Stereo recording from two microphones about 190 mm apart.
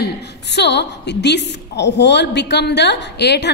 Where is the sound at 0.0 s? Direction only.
65° left (ahead or behind).